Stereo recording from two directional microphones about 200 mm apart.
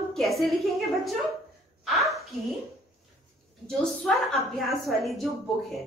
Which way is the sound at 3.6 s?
Centre (ahead or behind).